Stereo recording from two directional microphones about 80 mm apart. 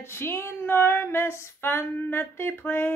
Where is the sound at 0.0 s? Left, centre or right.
Left.